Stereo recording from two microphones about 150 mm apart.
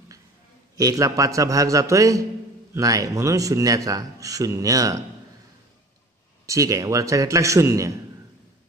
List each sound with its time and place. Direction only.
0.7 s a man's voice: 25° right (ahead or behind)
6.4 s a man's voice: 20° right (ahead or behind)